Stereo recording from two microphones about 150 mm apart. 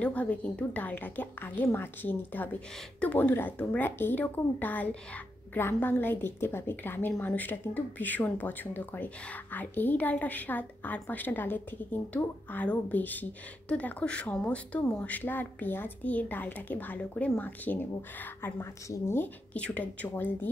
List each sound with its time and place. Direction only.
0.0 s a woman's voice: 10° left (ahead or behind)